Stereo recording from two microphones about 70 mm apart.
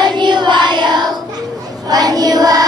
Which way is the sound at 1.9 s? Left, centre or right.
Right.